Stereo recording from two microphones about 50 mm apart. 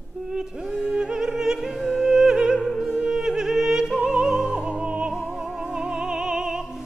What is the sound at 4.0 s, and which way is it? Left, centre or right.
Opera, centre.